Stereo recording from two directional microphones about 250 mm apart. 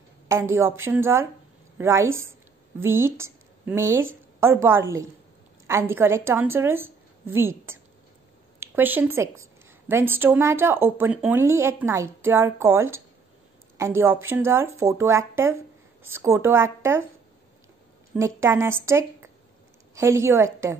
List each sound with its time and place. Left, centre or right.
0.6 s a woman's voice: centre
18.1 s a woman's voice: centre